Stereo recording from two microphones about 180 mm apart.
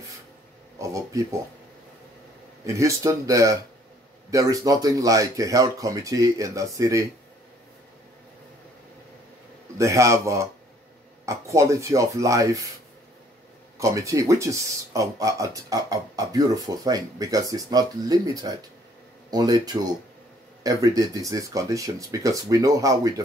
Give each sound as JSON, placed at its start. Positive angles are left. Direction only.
{"t": 0.7, "sound": "speech", "side_deg": -15}
{"t": 2.6, "sound": "speech", "side_deg": -15}
{"t": 9.8, "sound": "speech", "side_deg": -15}
{"t": 13.7, "sound": "speech", "side_deg": -15}